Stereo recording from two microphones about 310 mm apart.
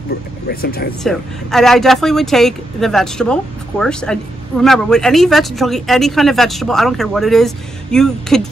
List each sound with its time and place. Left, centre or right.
0.5 s speech: left
1.0 s speech: centre